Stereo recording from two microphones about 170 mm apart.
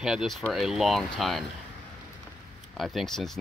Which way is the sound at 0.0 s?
5° right (ahead or behind).